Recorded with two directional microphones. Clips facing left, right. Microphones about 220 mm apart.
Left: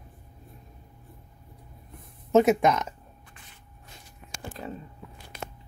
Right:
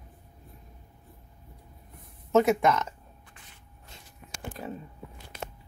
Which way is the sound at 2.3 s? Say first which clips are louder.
Left 2 dB; 20° left (ahead or behind).